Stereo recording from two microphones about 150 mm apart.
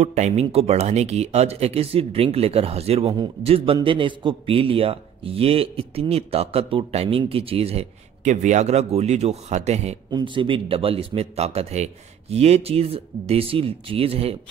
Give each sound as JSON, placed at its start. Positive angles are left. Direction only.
{"t": 0.0, "sound": "speech", "side_deg": -50}
{"t": 10.1, "sound": "speech", "side_deg": -35}